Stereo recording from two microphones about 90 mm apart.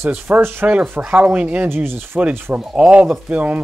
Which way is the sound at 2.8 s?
15° right (ahead or behind).